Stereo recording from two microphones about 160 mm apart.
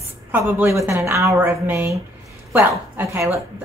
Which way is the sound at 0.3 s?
10° right (ahead or behind).